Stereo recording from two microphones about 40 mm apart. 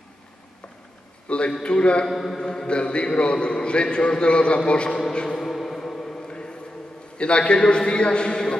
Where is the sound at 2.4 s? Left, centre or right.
Centre.